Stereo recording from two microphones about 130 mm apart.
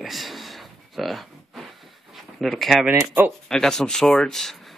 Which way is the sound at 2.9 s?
15° right (ahead or behind).